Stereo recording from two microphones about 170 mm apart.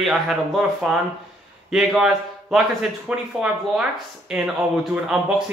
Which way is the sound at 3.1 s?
5° right (ahead or behind).